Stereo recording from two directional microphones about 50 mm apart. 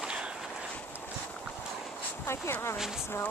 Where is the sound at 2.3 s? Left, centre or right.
Left.